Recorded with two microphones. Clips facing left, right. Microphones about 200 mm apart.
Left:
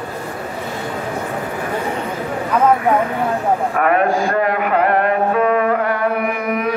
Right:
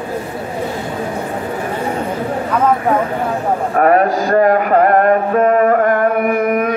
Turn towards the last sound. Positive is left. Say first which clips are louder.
# right 5 dB
turn(degrees=-50)  # may be behind; listen again after turning